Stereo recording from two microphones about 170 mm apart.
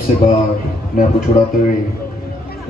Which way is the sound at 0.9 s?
55° left (ahead or behind).